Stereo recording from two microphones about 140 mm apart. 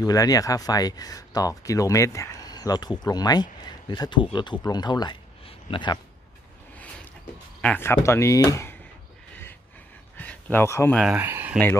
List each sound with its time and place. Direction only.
0.0 s speech: 25° left (ahead or behind)
7.6 s speech: 15° left (ahead or behind)
9.3 s a sound: 15° left (ahead or behind)
11.1 s speech: 15° right (ahead or behind)